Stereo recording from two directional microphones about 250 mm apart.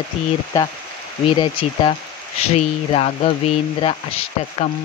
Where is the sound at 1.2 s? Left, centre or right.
Centre.